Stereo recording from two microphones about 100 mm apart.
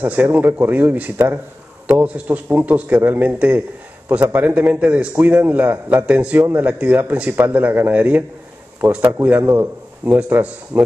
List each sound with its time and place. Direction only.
0.0 s a man's voice: 15° right (ahead or behind)
9.4 s a man's voice: 30° right (ahead or behind)
10.0 s a man's voice: 20° right (ahead or behind)